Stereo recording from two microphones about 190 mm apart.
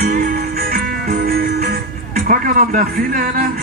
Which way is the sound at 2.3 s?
50° right (ahead or behind).